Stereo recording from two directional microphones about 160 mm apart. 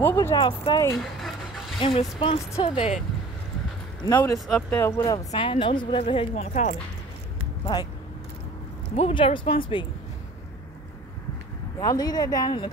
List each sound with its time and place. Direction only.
0.0 s speech: 15° left (ahead or behind)
0.4 s speech: 30° left (ahead or behind)
0.9 s dog: centre (ahead or behind)
1.8 s speech: 35° left (ahead or behind)
4.0 s speech: 20° left (ahead or behind)
4.5 s speech: 5° left (ahead or behind); by 6.8 s 50° left (ahead or behind)
8.9 s speech: 35° left (ahead or behind)
11.8 s speech: 25° left (ahead or behind)